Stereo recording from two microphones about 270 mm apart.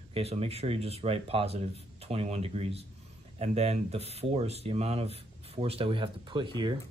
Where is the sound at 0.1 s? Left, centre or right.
Right.